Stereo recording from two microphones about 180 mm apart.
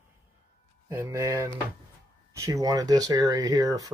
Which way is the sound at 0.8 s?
15° right (ahead or behind).